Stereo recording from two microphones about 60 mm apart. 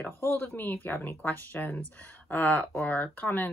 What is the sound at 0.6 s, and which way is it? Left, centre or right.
Speech, left.